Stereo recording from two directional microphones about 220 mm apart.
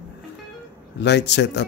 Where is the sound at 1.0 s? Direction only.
50° left (ahead or behind).